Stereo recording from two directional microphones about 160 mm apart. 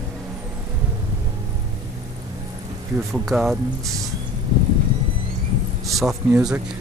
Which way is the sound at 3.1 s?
5° right (ahead or behind).